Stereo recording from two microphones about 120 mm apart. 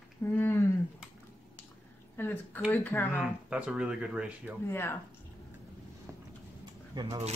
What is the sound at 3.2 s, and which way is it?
Speech, 10° right (ahead or behind).